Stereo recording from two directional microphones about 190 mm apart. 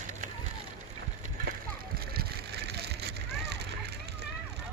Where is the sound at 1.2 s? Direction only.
50° right (ahead or behind).